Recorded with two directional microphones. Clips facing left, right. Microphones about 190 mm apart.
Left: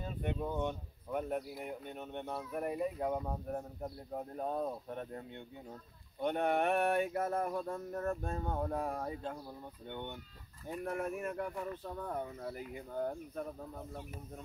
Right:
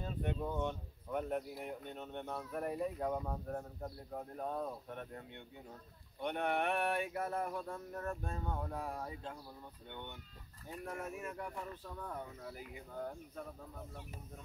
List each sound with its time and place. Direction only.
0.0 s speech: 10° left (ahead or behind); by 5.2 s 30° left (ahead or behind)
6.1 s speech: 45° left (ahead or behind)